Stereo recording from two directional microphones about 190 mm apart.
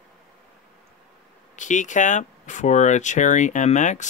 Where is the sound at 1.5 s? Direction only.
40° left (ahead or behind).